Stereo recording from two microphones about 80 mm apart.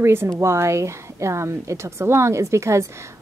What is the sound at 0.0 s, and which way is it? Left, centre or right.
A woman's voice, right.